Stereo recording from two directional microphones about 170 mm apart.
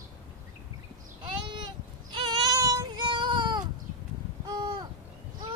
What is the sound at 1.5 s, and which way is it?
Child singing, 25° right (ahead or behind).